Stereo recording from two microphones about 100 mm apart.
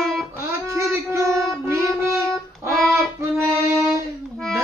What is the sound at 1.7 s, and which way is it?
Music, 30° right (ahead or behind).